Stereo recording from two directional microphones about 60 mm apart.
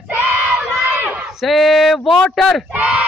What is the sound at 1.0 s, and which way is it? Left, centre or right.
Speech, centre.